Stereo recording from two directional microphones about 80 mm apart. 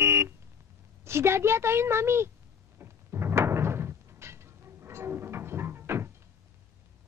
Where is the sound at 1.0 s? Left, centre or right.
Right.